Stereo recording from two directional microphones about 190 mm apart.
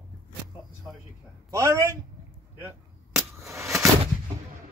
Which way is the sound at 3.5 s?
15° right (ahead or behind).